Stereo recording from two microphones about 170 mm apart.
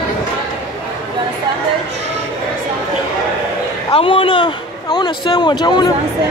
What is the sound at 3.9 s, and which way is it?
A man's voice, 30° left (ahead or behind).